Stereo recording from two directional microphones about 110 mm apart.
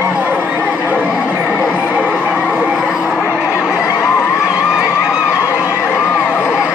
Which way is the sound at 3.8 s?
25° left (ahead or behind).